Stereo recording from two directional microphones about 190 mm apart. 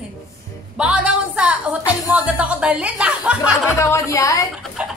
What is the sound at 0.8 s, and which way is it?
A woman's voice, 5° right (ahead or behind).